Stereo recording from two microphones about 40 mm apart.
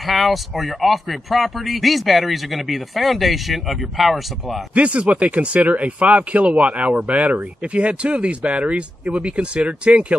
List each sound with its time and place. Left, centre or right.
0.0 s speech: centre
4.7 s speech: right